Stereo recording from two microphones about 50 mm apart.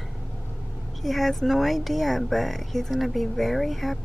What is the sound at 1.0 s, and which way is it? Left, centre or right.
Speech, centre.